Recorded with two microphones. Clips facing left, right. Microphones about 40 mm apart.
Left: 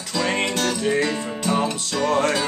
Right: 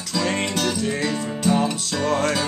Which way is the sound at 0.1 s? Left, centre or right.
Centre.